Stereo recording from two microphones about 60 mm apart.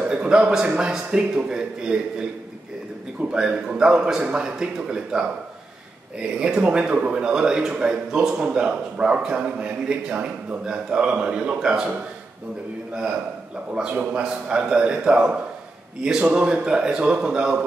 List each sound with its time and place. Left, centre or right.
0.1 s a man's voice: centre
6.4 s a man's voice: centre
13.9 s a man's voice: centre